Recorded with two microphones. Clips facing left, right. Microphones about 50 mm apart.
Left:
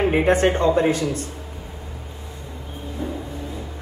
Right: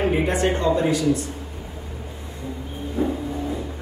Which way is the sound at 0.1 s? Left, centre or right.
Left.